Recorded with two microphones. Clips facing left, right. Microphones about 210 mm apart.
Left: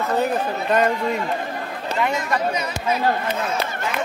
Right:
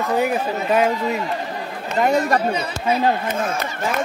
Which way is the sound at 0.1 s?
10° right (ahead or behind).